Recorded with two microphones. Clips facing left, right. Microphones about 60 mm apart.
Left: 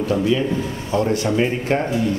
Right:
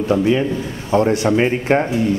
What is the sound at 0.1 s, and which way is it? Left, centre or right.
A man's voice, right.